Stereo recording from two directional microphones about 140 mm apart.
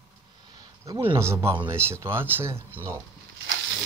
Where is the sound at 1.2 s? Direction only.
20° right (ahead or behind).